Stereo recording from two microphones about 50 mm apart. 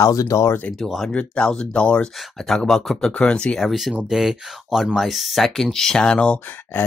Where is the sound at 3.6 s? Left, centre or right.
Centre; by 6.4 s left.